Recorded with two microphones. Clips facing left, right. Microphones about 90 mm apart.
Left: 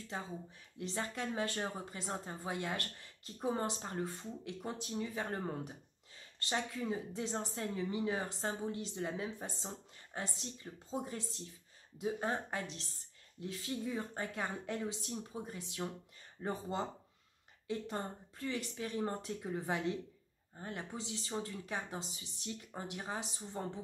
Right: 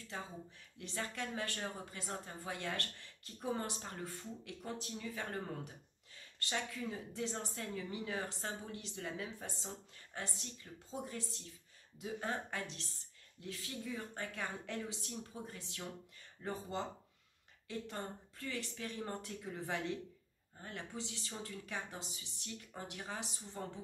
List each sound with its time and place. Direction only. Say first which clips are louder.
0.7 s speech: left 3 dB; 20° left (ahead or behind)